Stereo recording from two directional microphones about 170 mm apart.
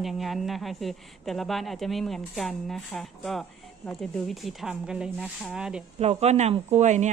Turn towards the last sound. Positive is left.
turn(degrees=-45)  # may be behind; listen again after turning